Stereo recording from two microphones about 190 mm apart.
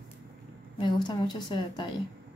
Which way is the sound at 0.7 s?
25° left (ahead or behind).